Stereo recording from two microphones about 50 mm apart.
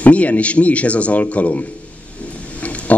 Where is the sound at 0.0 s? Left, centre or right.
Left.